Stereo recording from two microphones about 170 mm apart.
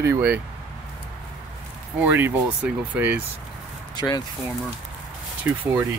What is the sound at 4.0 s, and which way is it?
Speech, 25° left (ahead or behind).